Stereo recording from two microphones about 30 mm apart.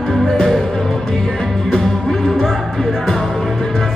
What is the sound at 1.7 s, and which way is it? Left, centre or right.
Music, centre.